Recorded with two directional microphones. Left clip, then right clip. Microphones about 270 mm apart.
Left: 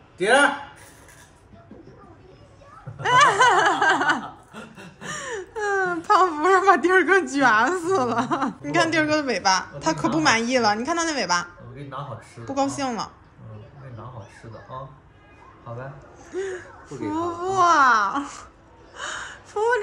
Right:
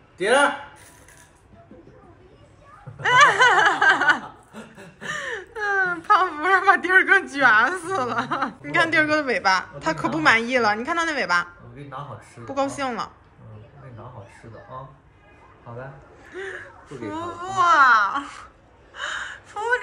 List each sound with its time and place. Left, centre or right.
0.2 s speech: centre
3.0 s a sound: centre
5.0 s speech: centre
12.4 s a woman's voice: centre
16.3 s speech: centre
18.9 s gasp: centre